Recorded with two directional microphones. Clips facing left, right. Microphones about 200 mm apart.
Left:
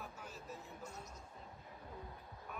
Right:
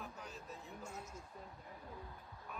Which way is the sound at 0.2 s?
Centre (ahead or behind).